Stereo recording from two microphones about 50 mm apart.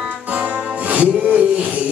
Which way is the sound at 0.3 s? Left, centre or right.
Right.